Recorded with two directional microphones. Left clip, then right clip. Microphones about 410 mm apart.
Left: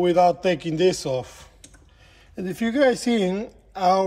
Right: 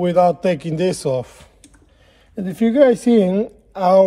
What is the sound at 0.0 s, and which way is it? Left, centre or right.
A woman's voice, centre.